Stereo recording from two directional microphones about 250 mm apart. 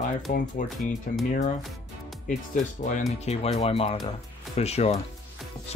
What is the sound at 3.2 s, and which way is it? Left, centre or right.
Speech, left.